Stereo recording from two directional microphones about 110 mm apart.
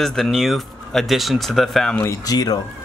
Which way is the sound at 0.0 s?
5° left (ahead or behind).